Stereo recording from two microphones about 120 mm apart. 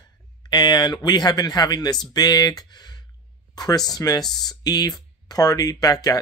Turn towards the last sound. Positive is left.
turn(degrees=30)  # may be behind; listen again after turning